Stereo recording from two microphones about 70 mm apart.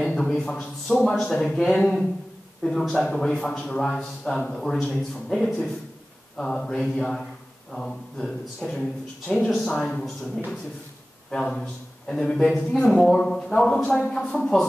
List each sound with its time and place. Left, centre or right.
0.0 s a man's voice: centre
1.7 s speech: left
2.6 s a man's voice: centre